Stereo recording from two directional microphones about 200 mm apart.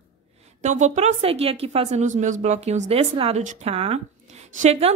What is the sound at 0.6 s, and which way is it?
A woman's voice, 35° right (ahead or behind).